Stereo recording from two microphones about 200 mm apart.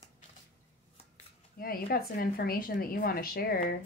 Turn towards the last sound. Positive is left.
turn(degrees=45)  # may be behind; listen again after turning